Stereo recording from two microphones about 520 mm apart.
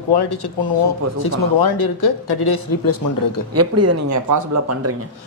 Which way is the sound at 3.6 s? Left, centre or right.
Right.